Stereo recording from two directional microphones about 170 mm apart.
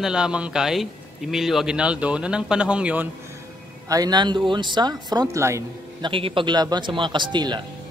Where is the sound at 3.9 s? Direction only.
25° right (ahead or behind).